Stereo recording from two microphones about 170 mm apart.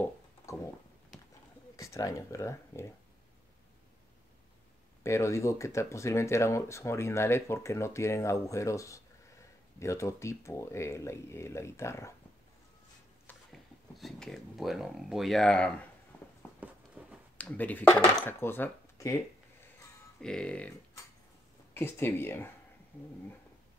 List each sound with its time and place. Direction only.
0.5 s a sound: 20° left (ahead or behind)
1.8 s speech: 20° left (ahead or behind)
5.0 s speech: 15° left (ahead or behind)
13.3 s speech: centre (ahead or behind)
17.0 s a sound: 10° right (ahead or behind)
17.4 s speech: 10° left (ahead or behind)
20.2 s speech: 5° left (ahead or behind)
21.7 s speech: 15° left (ahead or behind)